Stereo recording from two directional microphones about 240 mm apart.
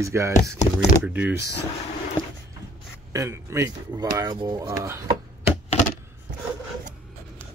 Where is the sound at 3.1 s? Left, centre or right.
Centre.